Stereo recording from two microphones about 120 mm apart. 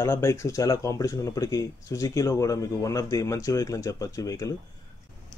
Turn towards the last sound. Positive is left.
turn(degrees=30)  # may be behind; listen again after turning